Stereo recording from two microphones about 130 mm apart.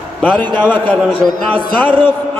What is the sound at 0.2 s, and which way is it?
A man's voice, 15° left (ahead or behind).